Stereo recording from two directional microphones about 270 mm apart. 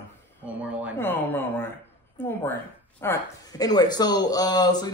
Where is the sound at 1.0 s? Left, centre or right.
Centre.